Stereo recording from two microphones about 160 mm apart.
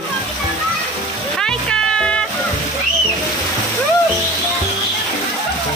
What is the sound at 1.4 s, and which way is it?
Music, 5° left (ahead or behind).